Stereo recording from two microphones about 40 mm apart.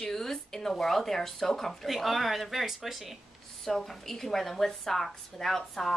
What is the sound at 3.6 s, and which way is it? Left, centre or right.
Speech, centre.